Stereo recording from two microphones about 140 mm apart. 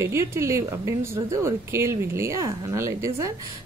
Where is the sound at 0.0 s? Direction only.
20° right (ahead or behind).